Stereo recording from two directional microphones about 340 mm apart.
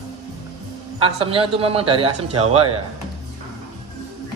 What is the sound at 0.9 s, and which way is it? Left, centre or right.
A man's voice, centre.